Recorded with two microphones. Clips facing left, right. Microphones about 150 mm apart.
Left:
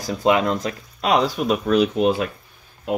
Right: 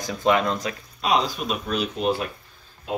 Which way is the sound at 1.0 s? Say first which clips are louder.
Left 4 dB; 60° left (ahead or behind).